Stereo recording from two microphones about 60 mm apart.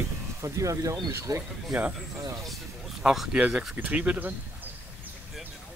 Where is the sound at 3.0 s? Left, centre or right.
Centre.